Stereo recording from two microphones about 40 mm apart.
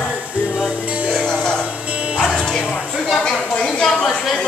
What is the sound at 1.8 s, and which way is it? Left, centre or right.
Music, right.